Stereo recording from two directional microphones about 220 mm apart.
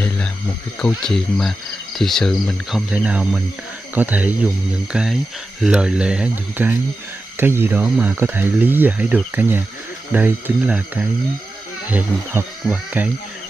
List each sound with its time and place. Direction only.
0.7 s speech: 5° left (ahead or behind)